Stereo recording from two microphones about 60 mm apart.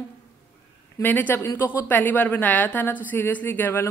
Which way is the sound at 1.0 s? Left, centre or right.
Left.